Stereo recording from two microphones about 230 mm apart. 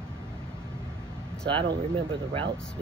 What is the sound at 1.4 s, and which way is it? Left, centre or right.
Speech, right.